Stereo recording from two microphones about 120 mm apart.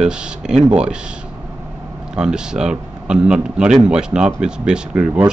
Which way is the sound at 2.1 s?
5° right (ahead or behind).